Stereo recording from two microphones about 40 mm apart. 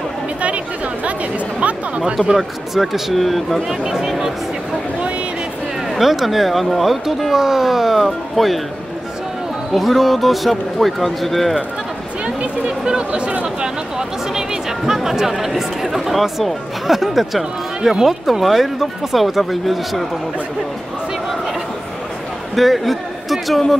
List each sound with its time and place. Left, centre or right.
2.3 s speech: centre
3.6 s speech: centre
5.9 s speech: centre
8.0 s speech: centre
9.8 s speech: centre
12.4 s speech: right
13.6 s a sound: centre
15.0 s speech: centre
22.6 s a man's voice: centre